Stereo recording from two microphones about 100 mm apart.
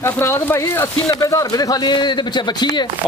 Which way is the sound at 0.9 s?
40° left (ahead or behind).